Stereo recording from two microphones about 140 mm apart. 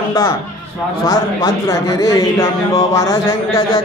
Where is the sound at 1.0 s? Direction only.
25° left (ahead or behind).